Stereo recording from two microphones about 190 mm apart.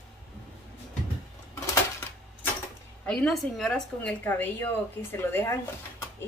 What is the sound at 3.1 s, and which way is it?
A woman's voice, 5° left (ahead or behind).